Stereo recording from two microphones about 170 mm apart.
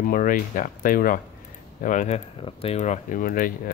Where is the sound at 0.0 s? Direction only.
55° left (ahead or behind); by 2.8 s 35° left (ahead or behind).